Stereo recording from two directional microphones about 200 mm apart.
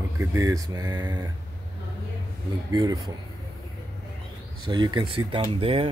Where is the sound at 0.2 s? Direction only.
15° right (ahead or behind).